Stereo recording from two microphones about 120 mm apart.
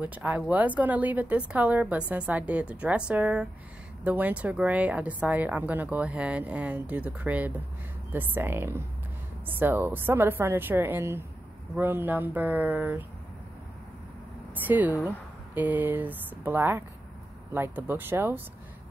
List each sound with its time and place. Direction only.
0.0 s a woman's voice: 15° right (ahead or behind)
14.5 s a woman's voice: 15° right (ahead or behind)